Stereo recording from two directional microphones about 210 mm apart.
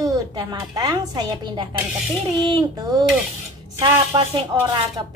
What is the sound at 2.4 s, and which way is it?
Child singing, 20° right (ahead or behind).